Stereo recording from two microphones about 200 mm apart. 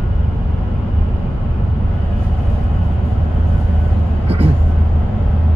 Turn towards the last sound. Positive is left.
turn(degrees=-30)  # may be behind; listen again after turning